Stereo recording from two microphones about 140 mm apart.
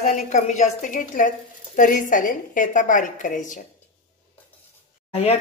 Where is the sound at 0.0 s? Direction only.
60° left (ahead or behind).